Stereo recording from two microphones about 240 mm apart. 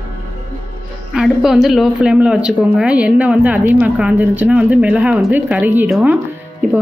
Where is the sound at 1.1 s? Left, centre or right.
Centre.